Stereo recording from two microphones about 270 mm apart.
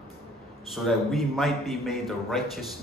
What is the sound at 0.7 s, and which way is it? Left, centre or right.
A man's voice, centre.